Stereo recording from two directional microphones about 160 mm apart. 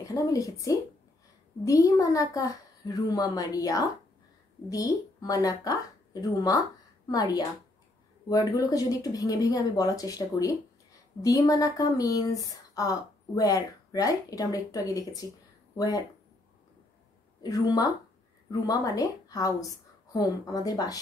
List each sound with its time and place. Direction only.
0.0 s speech: 20° left (ahead or behind)
7.1 s speech: 25° left (ahead or behind)
17.4 s speech: 25° left (ahead or behind)